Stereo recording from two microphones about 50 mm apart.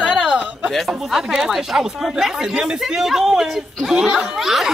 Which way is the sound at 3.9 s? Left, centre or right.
Centre.